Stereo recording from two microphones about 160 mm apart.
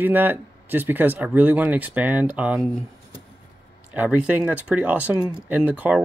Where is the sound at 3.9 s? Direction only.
10° right (ahead or behind).